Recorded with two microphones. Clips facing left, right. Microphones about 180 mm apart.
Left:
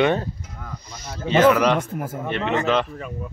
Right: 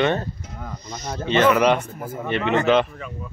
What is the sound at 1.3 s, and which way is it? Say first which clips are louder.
Speech: left 1 dB; 5° left (ahead or behind).